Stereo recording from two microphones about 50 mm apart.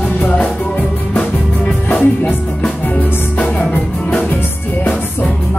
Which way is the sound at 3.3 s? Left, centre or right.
Left.